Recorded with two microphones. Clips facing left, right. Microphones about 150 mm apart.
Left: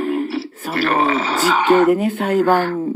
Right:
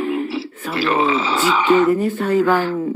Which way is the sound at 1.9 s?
85° left.